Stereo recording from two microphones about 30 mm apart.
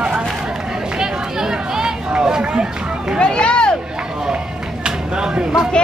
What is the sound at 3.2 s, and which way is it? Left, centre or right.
Speech, left.